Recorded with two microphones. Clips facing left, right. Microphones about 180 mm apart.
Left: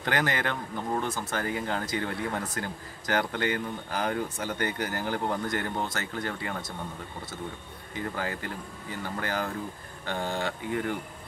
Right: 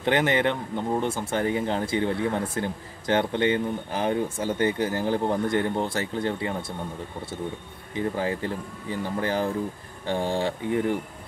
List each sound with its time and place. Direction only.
0.0 s speech: 25° right (ahead or behind)
7.9 s speech: 25° right (ahead or behind)